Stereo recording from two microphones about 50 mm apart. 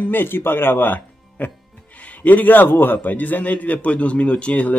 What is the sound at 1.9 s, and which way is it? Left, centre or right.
A man's voice, left.